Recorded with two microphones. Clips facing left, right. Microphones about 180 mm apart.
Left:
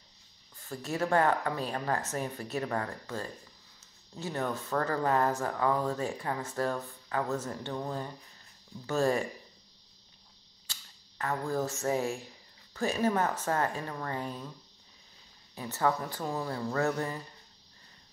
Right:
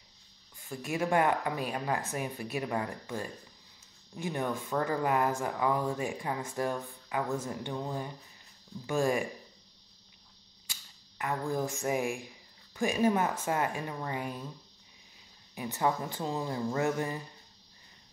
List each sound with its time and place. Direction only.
0.6 s speech: 10° right (ahead or behind)
10.7 s speech: 10° right (ahead or behind)
15.5 s speech: 15° right (ahead or behind)